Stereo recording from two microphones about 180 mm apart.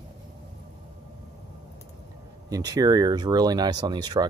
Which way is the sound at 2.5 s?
20° right (ahead or behind).